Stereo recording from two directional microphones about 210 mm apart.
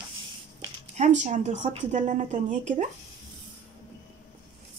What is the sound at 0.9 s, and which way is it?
A woman's voice, 35° right (ahead or behind).